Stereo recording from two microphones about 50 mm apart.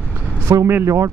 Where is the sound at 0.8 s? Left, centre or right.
Right.